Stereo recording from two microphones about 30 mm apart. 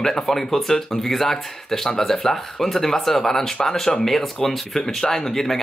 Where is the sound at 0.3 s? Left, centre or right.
Centre.